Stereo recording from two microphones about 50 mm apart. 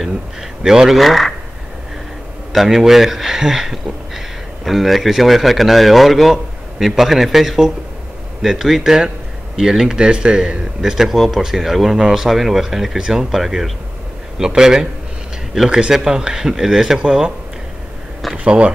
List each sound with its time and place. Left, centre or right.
0.0 s speech: centre
2.5 s a man's voice: centre
18.3 s speech: centre